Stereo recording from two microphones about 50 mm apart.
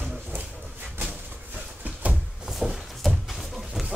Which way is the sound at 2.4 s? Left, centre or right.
Centre.